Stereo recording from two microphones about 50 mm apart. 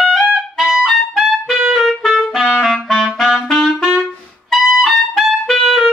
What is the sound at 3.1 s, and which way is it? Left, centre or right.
Music, centre.